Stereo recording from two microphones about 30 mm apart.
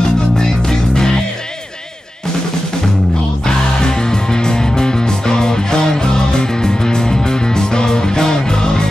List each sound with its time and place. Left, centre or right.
0.4 s music: left
3.4 s music: left